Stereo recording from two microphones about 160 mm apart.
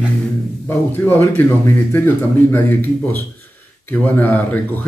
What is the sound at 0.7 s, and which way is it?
A man's voice, 10° left (ahead or behind).